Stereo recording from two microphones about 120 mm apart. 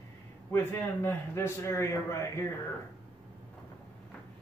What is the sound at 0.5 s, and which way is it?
A man's voice, 20° left (ahead or behind).